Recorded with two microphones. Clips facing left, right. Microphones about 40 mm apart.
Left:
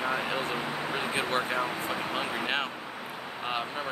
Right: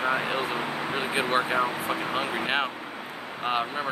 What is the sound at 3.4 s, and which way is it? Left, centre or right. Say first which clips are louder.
Speech: right 5 dB; right.